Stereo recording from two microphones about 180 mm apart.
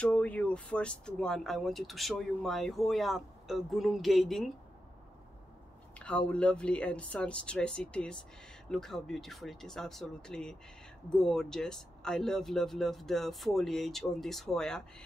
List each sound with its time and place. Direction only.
0.0 s speech: 5° left (ahead or behind)
5.9 s speech: 5° left (ahead or behind)